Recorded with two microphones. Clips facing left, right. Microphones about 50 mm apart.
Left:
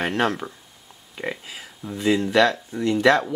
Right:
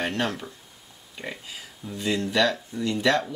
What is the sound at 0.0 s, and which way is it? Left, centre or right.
Speech, left.